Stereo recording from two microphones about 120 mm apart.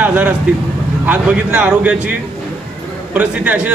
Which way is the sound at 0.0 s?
15° right (ahead or behind).